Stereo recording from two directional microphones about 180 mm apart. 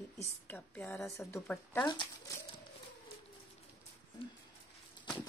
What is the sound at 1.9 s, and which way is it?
Speech, 25° left (ahead or behind).